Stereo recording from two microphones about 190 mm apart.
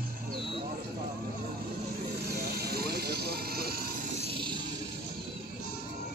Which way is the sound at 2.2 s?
55° right (ahead or behind).